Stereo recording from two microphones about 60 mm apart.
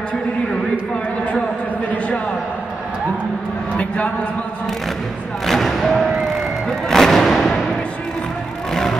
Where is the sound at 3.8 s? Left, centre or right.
Left.